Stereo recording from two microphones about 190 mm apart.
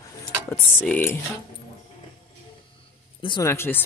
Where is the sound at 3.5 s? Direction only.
10° left (ahead or behind).